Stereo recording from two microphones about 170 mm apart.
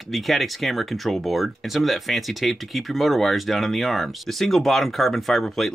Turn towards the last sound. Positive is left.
turn(degrees=0)  # may be behind; listen again after turning